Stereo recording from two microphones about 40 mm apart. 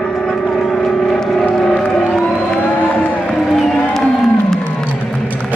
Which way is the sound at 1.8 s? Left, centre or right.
Left.